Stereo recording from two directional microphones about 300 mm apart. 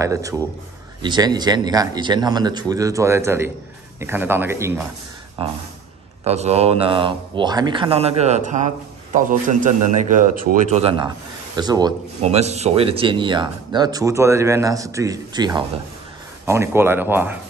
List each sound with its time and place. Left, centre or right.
0.0 s speech: centre